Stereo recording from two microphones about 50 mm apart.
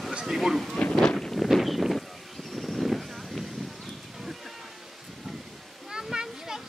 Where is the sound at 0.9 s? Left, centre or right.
Centre.